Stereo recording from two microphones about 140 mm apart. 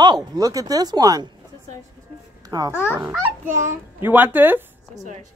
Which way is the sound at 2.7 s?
15° left (ahead or behind).